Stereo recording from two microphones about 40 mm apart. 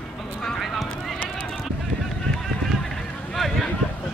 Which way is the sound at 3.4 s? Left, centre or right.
Centre.